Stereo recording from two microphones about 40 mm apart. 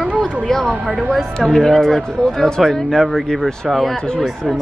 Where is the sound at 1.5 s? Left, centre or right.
Centre.